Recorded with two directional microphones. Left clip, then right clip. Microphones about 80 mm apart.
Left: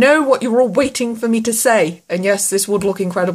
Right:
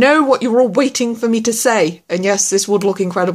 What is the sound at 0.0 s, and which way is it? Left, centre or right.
Speech, centre.